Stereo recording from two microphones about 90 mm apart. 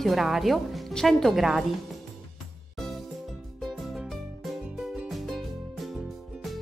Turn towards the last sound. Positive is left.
turn(degrees=0)  # may be behind; listen again after turning